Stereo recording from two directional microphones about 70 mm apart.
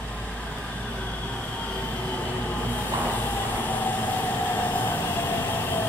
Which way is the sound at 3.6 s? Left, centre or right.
Left.